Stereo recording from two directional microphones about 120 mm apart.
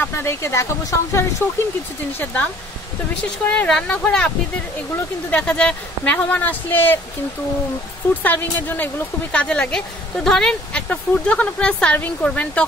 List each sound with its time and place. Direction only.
0.0 s speech: 20° left (ahead or behind)
2.1 s speech: 10° left (ahead or behind)
8.2 s speech: 15° left (ahead or behind)